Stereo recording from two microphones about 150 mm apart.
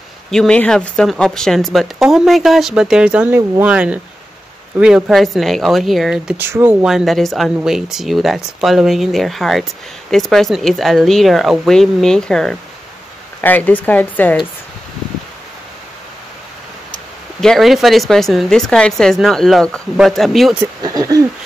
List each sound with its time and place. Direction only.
0.3 s speech: 5° left (ahead or behind)
6.3 s speech: 15° right (ahead or behind)
6.9 s speech: centre (ahead or behind)
17.4 s speech: centre (ahead or behind)
20.8 s speech: 25° right (ahead or behind)